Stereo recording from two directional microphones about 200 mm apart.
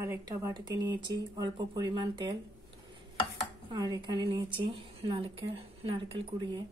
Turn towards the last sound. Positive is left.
turn(degrees=-20)  # may be behind; listen again after turning